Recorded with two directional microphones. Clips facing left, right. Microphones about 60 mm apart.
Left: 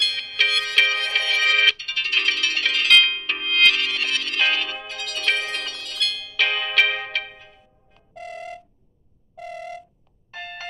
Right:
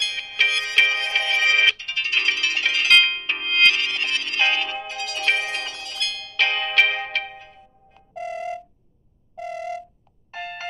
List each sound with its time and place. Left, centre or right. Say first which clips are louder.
0.0 s music: even; centre
10.3 s doorbell: right 3 dB; centre